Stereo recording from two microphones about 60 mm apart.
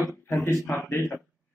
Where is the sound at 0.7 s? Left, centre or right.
Left.